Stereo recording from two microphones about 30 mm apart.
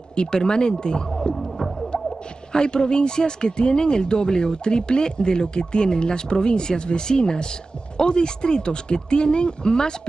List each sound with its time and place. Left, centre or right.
0.1 s speech: left
1.3 s music: centre
2.5 s speech: left